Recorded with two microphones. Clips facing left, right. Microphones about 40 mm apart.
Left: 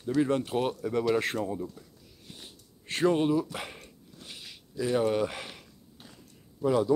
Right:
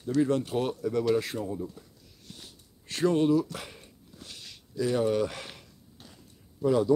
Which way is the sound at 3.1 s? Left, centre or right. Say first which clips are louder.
Right 2 dB; centre.